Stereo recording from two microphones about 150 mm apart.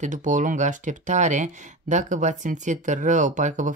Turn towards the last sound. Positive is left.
turn(degrees=-55)  # may be behind; listen again after turning